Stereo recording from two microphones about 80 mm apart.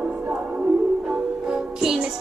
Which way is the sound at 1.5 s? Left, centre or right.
Centre.